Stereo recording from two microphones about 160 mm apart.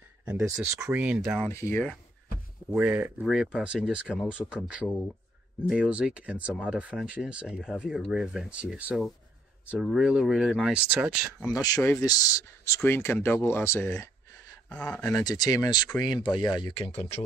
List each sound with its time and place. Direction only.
0.2 s a sound: 5° right (ahead or behind)
0.7 s speech: 15° right (ahead or behind)
1.4 s speech: 15° left (ahead or behind)
2.7 s speech: 10° right (ahead or behind)
5.7 s speech: 5° right (ahead or behind)
11.4 s speech: 20° left (ahead or behind)
15.2 s speech: 25° left (ahead or behind); by 17.2 s 40° left (ahead or behind)